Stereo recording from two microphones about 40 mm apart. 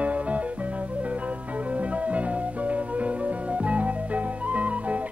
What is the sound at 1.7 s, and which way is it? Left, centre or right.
Music, right.